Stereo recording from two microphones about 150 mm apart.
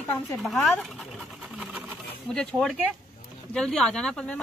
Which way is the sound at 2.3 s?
5° left (ahead or behind).